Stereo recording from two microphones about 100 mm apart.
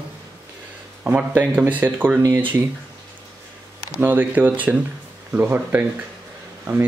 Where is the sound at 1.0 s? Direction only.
15° right (ahead or behind).